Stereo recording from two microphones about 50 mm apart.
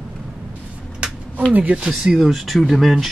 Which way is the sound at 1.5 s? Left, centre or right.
Right.